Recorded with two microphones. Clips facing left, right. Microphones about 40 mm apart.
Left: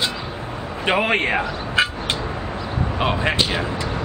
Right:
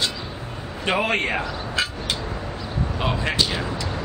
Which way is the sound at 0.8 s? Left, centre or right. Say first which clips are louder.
Left 3 dB; centre.